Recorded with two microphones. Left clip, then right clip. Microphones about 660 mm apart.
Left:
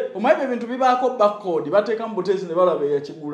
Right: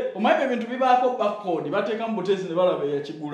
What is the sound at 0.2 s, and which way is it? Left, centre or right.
A man's voice, left.